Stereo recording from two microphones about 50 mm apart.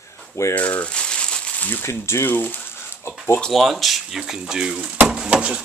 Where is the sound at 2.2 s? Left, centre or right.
Left.